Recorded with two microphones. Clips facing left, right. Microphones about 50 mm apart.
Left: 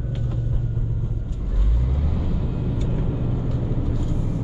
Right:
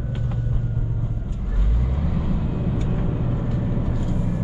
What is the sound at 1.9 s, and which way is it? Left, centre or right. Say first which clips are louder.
Vehicle: right 3 dB; centre.